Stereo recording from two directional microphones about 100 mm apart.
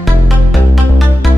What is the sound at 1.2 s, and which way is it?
Music, centre (ahead or behind).